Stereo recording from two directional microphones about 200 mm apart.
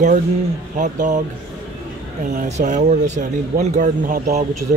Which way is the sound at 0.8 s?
40° right (ahead or behind).